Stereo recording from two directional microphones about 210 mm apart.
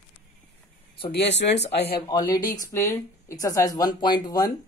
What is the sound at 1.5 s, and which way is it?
Speech, 55° left (ahead or behind).